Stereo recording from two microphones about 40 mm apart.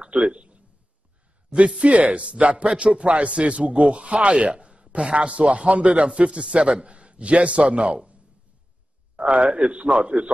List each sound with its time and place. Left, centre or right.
0.0 s a sound: right
1.8 s a man's voice: right
9.1 s a man's voice: right